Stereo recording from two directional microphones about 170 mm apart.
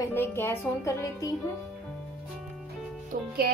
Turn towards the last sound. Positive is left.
turn(degrees=-60)  # may be behind; listen again after turning